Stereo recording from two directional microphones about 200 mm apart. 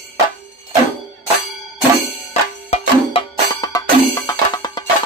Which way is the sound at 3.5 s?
20° left (ahead or behind).